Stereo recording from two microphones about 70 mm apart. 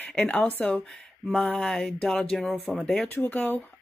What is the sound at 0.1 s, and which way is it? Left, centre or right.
Speech, centre.